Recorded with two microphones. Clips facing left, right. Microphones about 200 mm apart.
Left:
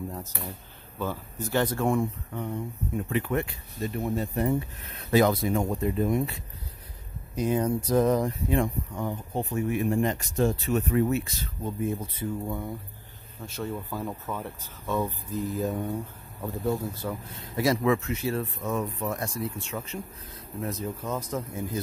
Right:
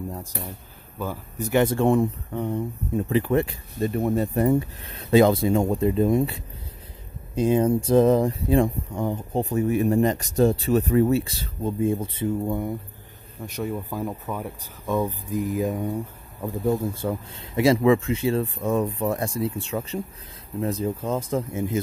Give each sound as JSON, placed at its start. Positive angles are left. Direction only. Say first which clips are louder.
{"t": 0.9, "sound": "speech", "louder": "right 2 dB", "side_deg": -15}
{"t": 3.8, "sound": "speech", "louder": "right 6 dB", "side_deg": -55}
{"t": 4.8, "sound": "speech", "louder": "right 5 dB", "side_deg": -30}